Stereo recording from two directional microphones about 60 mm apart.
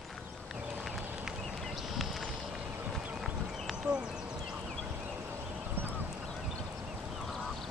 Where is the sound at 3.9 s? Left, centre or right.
Centre.